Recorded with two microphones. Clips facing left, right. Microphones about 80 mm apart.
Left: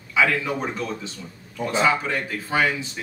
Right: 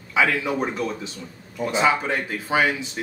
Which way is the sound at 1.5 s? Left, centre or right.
Centre.